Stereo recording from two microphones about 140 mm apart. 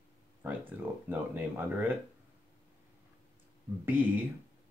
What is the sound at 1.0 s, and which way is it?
Speech, 15° right (ahead or behind).